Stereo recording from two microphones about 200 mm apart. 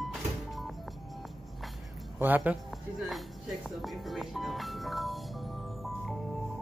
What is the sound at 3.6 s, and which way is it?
Music, centre (ahead or behind).